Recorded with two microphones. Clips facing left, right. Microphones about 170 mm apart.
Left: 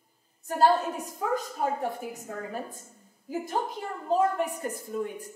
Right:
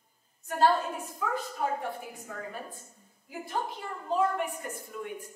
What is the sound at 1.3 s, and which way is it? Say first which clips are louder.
A woman's voice: left 3 dB; 40° left (ahead or behind).